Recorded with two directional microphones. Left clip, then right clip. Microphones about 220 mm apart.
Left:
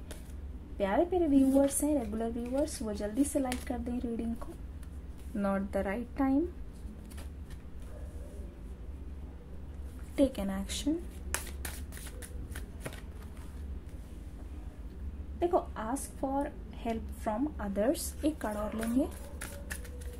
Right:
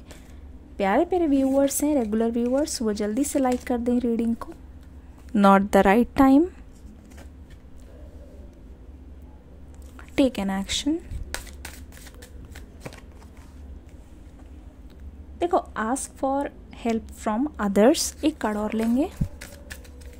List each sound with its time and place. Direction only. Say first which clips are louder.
0.7 s a woman's voice: right 7 dB; 50° right (ahead or behind)
10.1 s a woman's voice: right 7 dB; 40° right (ahead or behind)
11.3 s a sound: right 3 dB; 15° right (ahead or behind)
15.3 s a woman's voice: right 7 dB; 50° right (ahead or behind)